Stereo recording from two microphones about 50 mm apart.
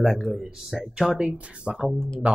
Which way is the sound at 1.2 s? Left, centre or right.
Right.